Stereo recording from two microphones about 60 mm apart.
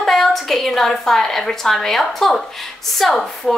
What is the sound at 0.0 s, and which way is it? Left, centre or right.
A woman's voice, centre.